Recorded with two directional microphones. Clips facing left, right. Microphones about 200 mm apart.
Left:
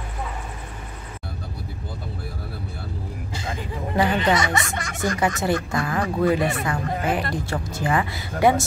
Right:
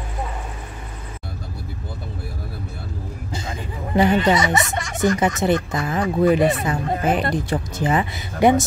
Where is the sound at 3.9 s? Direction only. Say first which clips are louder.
Right 4 dB; 20° right (ahead or behind).